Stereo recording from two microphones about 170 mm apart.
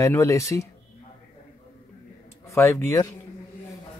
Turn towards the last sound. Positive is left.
turn(degrees=15)  # may be behind; listen again after turning